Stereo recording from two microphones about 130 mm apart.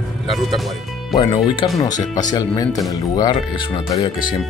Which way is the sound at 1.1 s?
35° left (ahead or behind).